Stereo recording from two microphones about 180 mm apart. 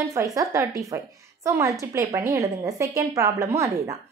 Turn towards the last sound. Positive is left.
turn(degrees=-15)  # may be behind; listen again after turning